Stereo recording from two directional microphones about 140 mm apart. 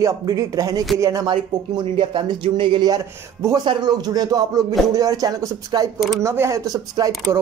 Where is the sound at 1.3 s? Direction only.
35° right (ahead or behind).